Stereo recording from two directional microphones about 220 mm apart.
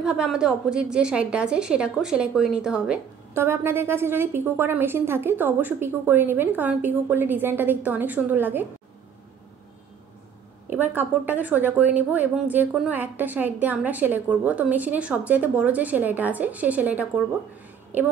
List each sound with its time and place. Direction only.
0.0 s a woman's voice: 5° right (ahead or behind)
10.7 s a woman's voice: 10° right (ahead or behind)